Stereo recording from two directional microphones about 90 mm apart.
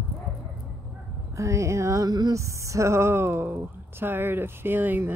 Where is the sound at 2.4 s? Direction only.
35° right (ahead or behind).